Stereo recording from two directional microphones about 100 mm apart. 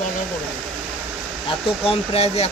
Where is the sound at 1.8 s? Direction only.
85° left.